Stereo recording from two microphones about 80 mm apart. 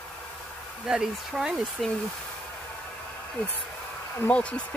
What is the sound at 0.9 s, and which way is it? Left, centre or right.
Speech, centre.